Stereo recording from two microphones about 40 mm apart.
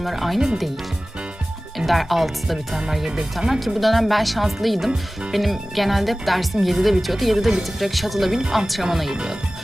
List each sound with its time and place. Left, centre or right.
0.0 s speech: centre
1.8 s speech: centre
8.3 s speech: centre
9.1 s music: right